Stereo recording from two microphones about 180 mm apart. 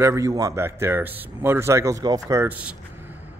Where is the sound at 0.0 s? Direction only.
15° right (ahead or behind).